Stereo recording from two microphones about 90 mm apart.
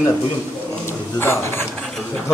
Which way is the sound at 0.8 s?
30° left (ahead or behind).